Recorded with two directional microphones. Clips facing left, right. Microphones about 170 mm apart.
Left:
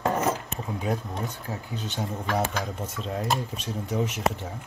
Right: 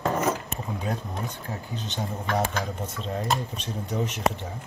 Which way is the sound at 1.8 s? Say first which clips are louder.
Even; 5° left (ahead or behind).